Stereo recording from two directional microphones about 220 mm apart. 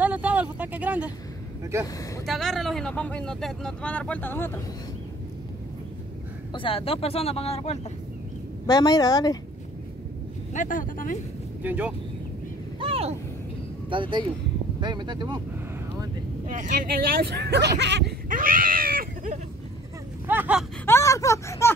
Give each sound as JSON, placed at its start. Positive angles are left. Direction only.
{"t": 0.0, "sound": "speech", "side_deg": -5}
{"t": 2.2, "sound": "speech", "side_deg": 0}
{"t": 6.5, "sound": "speech", "side_deg": 25}
{"t": 8.6, "sound": "a woman's voice", "side_deg": 15}
{"t": 10.5, "sound": "speech", "side_deg": 35}
{"t": 11.6, "sound": "speech", "side_deg": -5}
{"t": 12.8, "sound": "vehicle", "side_deg": -25}
{"t": 13.8, "sound": "speech", "side_deg": -20}
{"t": 16.4, "sound": "a sound", "side_deg": -35}
{"t": 20.2, "sound": "a sound", "side_deg": -10}
{"t": 20.8, "sound": "a sound", "side_deg": 10}